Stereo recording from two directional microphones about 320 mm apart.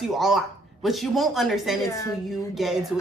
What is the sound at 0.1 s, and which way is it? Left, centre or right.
A woman's voice, centre.